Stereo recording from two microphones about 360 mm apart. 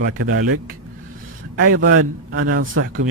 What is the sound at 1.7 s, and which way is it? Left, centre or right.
A man's voice, right.